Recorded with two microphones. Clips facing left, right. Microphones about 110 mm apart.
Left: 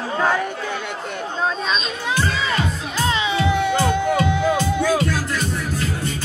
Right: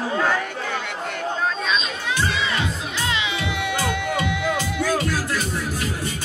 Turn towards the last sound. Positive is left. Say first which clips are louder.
# left 4 dB
turn(degrees=20)  # may be behind; listen again after turning